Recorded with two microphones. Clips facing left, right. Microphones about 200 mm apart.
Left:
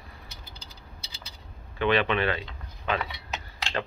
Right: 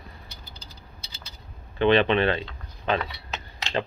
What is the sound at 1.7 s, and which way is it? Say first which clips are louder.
Speech: right 5 dB; 30° right (ahead or behind).